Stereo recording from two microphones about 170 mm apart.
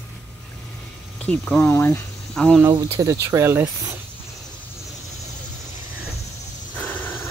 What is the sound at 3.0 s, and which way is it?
Speech, 15° right (ahead or behind).